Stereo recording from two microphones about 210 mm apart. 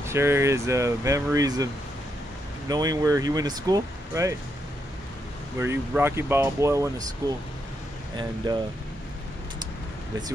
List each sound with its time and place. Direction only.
0.0 s speech: 10° right (ahead or behind)
2.7 s speech: 15° right (ahead or behind)
5.6 s speech: 10° right (ahead or behind)
8.5 s speech: 20° right (ahead or behind)